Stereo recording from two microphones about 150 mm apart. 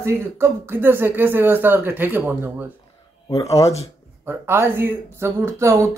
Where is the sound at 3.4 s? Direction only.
20° left (ahead or behind).